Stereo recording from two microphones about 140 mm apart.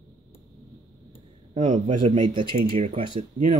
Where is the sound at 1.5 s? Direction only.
55° right (ahead or behind).